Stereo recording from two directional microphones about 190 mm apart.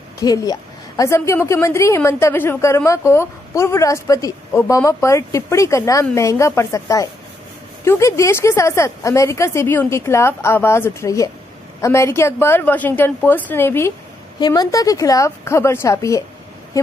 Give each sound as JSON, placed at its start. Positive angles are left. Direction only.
{"t": 0.2, "sound": "a woman's voice", "side_deg": 20}